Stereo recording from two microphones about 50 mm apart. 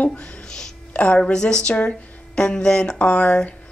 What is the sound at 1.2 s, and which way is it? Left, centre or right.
Speech, centre.